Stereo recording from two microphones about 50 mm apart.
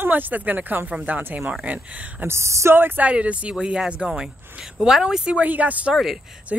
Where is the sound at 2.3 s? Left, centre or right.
Right.